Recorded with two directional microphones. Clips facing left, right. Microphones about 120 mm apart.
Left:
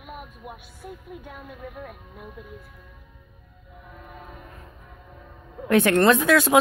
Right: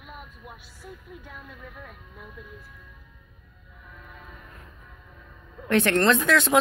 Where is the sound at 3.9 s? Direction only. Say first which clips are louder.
Left 4 dB; 25° left (ahead or behind).